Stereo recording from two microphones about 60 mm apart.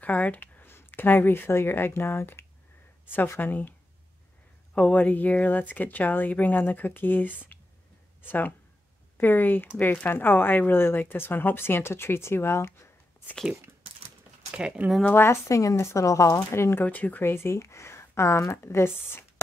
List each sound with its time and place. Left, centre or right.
0.0 s speech: left
4.7 s speech: left
14.6 s speech: centre
15.1 s speech: left
16.8 s speech: left
17.2 s speech: left